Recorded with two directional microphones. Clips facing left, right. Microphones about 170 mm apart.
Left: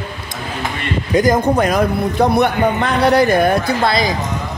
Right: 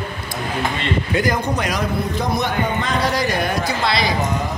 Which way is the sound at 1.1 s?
45° left (ahead or behind).